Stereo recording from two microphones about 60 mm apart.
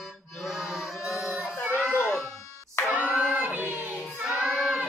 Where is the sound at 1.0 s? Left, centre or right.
Centre.